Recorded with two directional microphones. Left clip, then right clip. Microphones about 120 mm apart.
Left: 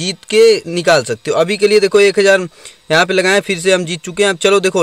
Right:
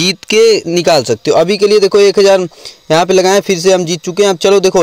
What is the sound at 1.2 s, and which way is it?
Speech, 25° right (ahead or behind).